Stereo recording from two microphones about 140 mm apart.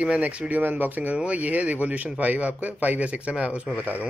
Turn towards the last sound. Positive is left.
turn(degrees=-10)  # may be behind; listen again after turning